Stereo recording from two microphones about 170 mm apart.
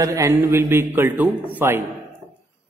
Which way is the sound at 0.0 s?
20° right (ahead or behind).